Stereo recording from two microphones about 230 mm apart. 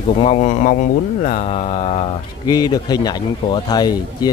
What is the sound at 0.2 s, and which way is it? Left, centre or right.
Speech, left.